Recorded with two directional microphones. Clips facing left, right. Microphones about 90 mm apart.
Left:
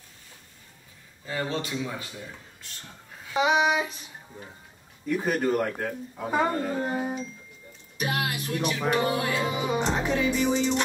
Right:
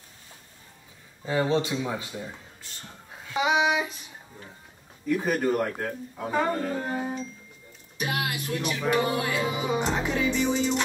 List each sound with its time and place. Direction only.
1.2 s speech: 25° right (ahead or behind)
3.5 s music: centre (ahead or behind)
5.0 s music: centre (ahead or behind)
6.8 s speech: 15° left (ahead or behind)
8.0 s speech: 25° left (ahead or behind)
8.5 s music: 20° left (ahead or behind)
9.1 s music: centre (ahead or behind)